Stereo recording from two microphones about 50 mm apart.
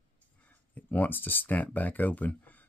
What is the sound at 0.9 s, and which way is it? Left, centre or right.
Speech, left.